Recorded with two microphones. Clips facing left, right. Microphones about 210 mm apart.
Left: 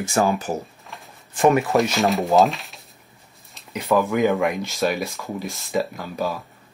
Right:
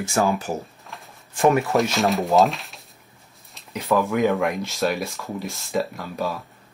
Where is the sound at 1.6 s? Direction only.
Centre (ahead or behind).